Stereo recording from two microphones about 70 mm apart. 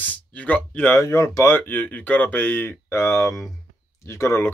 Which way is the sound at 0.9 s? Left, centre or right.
Left.